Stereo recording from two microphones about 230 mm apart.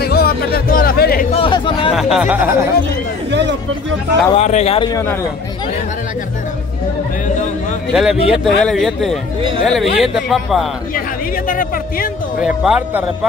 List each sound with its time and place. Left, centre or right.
0.0 s music: left
1.3 s a sound: left
2.0 s speech: centre
3.3 s a sound: right
4.4 s speech: left; by 5.2 s centre
7.9 s a man's voice: centre
11.4 s speech: left
12.4 s a man's voice: centre